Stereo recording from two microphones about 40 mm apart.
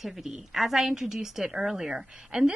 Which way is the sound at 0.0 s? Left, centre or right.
Centre.